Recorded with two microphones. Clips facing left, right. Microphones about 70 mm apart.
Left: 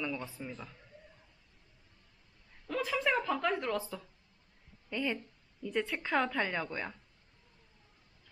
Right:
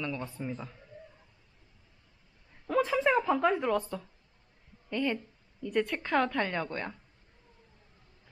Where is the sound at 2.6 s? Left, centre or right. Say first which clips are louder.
Right 6 dB; centre.